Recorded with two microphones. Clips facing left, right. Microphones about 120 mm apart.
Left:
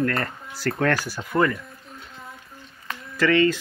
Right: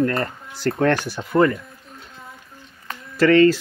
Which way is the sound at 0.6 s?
25° right (ahead or behind).